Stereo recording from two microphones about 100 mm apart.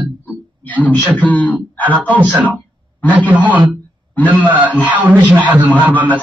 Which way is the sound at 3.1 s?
15° right (ahead or behind).